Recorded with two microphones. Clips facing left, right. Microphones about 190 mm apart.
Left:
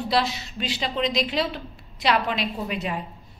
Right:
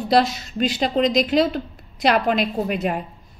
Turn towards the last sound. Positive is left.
turn(degrees=-50)  # may be behind; listen again after turning